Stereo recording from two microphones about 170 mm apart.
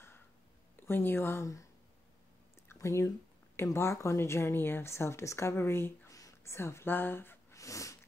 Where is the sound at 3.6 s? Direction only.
15° left (ahead or behind).